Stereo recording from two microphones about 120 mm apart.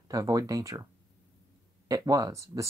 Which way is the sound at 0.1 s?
30° right (ahead or behind).